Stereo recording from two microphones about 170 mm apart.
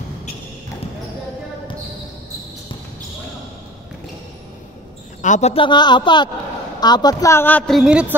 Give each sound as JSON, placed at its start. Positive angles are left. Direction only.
{"t": 5.2, "sound": "a woman's voice", "side_deg": 45}